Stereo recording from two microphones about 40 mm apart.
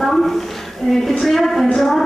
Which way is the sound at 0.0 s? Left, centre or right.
Centre.